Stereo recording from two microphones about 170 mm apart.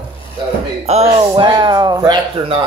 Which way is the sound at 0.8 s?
40° right (ahead or behind).